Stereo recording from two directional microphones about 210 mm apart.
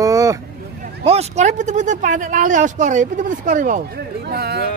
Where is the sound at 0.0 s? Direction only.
15° right (ahead or behind).